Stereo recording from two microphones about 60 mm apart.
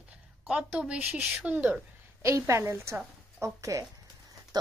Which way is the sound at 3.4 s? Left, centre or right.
Right.